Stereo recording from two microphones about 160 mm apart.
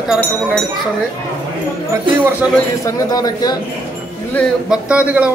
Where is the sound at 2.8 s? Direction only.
20° left (ahead or behind).